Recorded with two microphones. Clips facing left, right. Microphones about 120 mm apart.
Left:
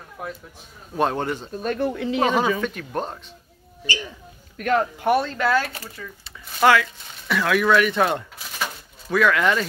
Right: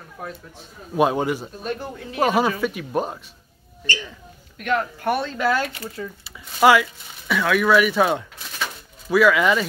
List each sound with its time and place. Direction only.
0.9 s speech: 10° right (ahead or behind)
1.6 s speech: 55° left (ahead or behind)
2.1 s speech: 5° right (ahead or behind)
3.8 s speech: 10° left (ahead or behind)
4.6 s speech: 40° left (ahead or behind)
4.9 s speech: 10° left (ahead or behind)
5.3 s speech: 10° right (ahead or behind)
7.2 s speech: centre (ahead or behind)